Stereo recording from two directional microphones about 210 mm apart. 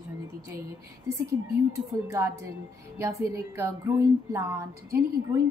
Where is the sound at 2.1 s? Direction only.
15° right (ahead or behind).